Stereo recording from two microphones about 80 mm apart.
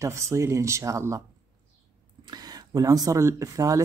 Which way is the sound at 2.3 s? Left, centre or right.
Right.